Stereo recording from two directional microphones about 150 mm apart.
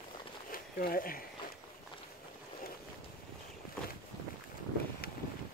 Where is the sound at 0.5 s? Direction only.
75° left (ahead or behind).